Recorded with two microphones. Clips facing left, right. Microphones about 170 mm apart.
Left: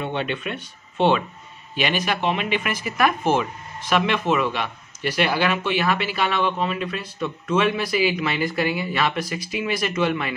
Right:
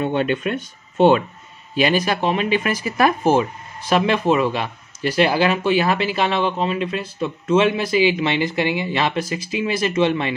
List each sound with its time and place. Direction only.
0.0 s speech: 45° right (ahead or behind); by 10.3 s 25° right (ahead or behind)